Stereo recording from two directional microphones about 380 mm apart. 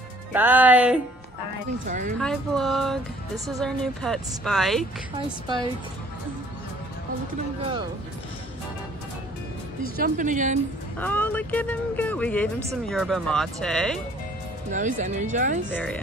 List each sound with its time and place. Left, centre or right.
0.3 s speech: centre
1.9 s a woman's voice: centre
2.1 s speech: centre
9.9 s a woman's voice: right
11.0 s speech: centre
14.7 s a woman's voice: centre
15.7 s speech: centre